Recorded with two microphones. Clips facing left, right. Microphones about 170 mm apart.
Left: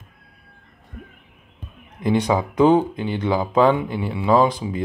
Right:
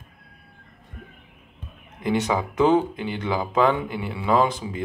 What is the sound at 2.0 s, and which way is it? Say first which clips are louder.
Speech: left 4 dB; 15° left (ahead or behind).